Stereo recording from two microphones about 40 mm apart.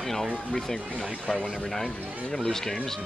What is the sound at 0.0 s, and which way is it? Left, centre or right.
Speech, centre.